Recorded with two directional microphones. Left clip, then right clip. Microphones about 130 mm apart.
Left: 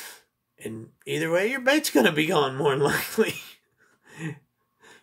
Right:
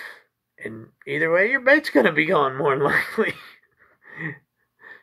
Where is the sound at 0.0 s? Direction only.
20° left (ahead or behind).